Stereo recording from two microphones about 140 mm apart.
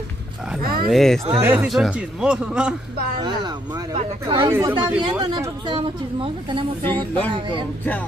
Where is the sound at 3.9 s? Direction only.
40° right (ahead or behind).